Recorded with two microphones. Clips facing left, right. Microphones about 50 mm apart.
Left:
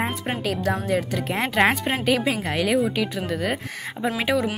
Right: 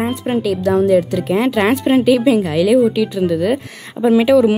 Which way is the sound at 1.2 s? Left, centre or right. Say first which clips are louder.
Right 6 dB; left.